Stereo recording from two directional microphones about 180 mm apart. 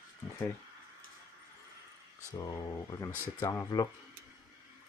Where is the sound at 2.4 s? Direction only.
20° left (ahead or behind).